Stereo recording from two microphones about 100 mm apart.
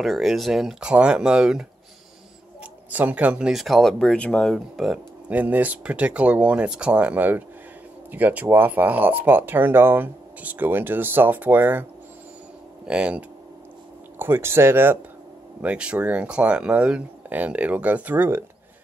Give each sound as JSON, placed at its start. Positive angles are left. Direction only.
{"t": 0.0, "sound": "speech", "side_deg": 0}
{"t": 2.9, "sound": "speech", "side_deg": -15}
{"t": 4.7, "sound": "speech", "side_deg": -5}
{"t": 5.3, "sound": "speech", "side_deg": -15}
{"t": 12.8, "sound": "speech", "side_deg": -10}
{"t": 14.1, "sound": "speech", "side_deg": -20}
{"t": 15.6, "sound": "speech", "side_deg": -10}